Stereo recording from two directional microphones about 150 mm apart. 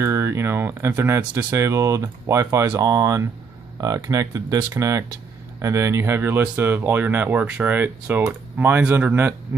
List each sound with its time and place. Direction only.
0.0 s speech: 20° right (ahead or behind)